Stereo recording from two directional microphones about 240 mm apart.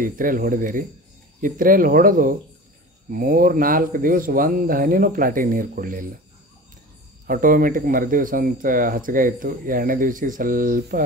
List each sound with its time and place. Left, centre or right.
0.0 s speech: right
7.2 s speech: right